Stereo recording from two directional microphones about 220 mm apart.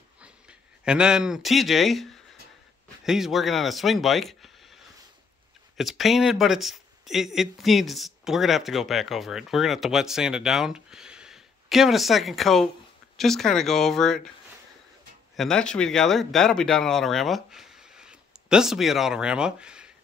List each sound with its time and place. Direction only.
0.2 s speech: 5° right (ahead or behind)
5.8 s speech: centre (ahead or behind)
15.3 s speech: centre (ahead or behind)